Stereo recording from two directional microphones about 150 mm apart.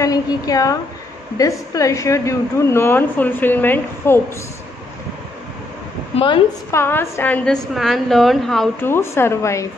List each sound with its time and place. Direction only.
0.0 s a woman's voice: 25° left (ahead or behind)
6.1 s a woman's voice: 35° left (ahead or behind)
6.7 s a woman's voice: 15° left (ahead or behind)
8.8 s a woman's voice: 15° left (ahead or behind)